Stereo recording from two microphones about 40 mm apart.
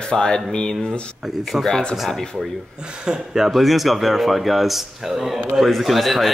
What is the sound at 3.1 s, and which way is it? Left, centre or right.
Speech, centre.